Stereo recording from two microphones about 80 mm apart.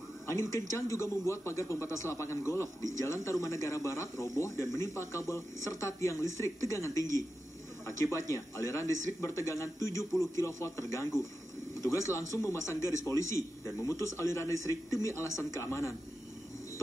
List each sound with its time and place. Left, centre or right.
0.3 s speech: left